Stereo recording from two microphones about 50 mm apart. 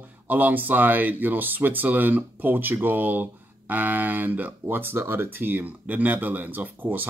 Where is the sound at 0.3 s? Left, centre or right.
Right.